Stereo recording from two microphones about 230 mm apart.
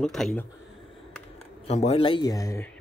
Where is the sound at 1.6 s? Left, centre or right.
Left.